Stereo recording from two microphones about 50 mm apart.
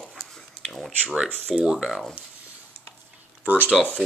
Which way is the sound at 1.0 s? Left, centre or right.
Centre.